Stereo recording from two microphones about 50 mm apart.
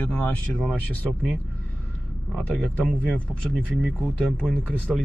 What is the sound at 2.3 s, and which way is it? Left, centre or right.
Speech, centre.